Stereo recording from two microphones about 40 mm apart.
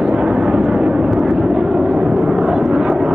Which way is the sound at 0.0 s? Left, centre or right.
Right.